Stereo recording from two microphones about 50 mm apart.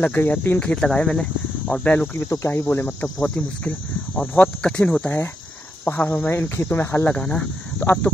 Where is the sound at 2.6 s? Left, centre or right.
Left.